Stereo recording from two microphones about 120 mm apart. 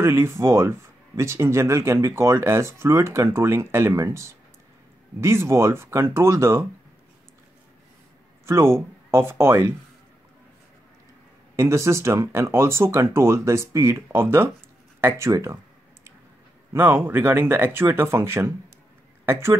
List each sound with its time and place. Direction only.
0.0 s speech: 20° right (ahead or behind)
8.5 s speech: 20° right (ahead or behind)
11.5 s speech: 25° right (ahead or behind)
15.0 s a sound: 20° right (ahead or behind)
16.7 s speech: 20° right (ahead or behind)